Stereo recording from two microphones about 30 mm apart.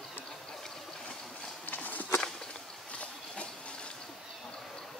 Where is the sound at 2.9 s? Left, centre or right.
Left.